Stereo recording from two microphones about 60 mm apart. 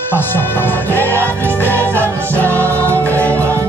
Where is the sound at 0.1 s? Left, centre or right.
Left.